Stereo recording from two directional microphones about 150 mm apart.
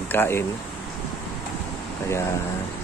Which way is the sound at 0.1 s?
15° left (ahead or behind).